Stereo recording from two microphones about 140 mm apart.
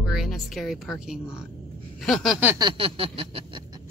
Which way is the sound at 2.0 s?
Centre (ahead or behind).